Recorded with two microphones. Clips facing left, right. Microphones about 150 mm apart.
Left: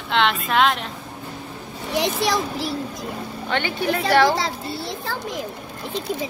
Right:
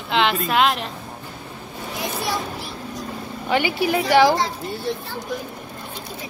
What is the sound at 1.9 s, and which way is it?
Speech, 85° left.